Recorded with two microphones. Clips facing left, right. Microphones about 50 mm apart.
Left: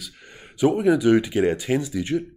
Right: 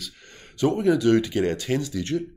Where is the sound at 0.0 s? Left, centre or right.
Centre.